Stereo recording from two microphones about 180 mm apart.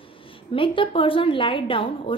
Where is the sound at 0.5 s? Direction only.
30° left (ahead or behind).